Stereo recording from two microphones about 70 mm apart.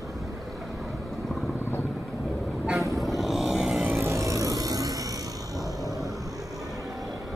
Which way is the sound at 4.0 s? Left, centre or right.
Right.